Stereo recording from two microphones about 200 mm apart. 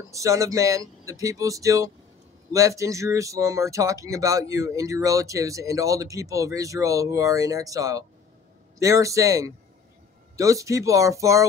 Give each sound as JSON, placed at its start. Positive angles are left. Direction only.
{"t": 0.1, "sound": "speech", "side_deg": -15}